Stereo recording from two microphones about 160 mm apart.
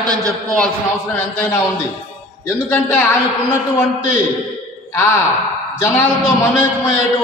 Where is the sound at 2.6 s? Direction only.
10° left (ahead or behind).